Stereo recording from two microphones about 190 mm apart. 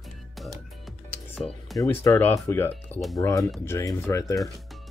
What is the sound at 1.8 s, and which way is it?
Speech, 15° left (ahead or behind).